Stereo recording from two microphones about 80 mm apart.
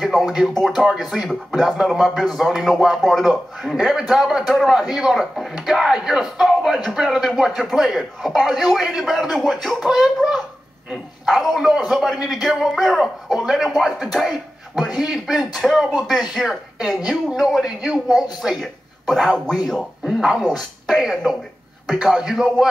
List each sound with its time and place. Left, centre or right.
0.0 s a man's voice: centre